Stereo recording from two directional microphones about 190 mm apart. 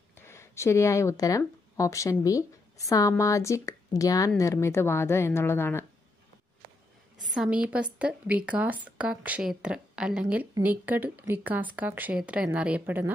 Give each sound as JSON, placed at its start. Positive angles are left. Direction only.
{"t": 0.1, "sound": "speech", "side_deg": 15}
{"t": 7.2, "sound": "a woman's voice", "side_deg": 0}